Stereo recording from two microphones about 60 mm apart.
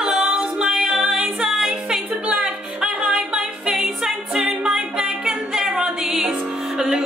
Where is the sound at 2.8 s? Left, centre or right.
Centre.